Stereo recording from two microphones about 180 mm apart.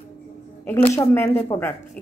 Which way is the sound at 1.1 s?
15° left (ahead or behind).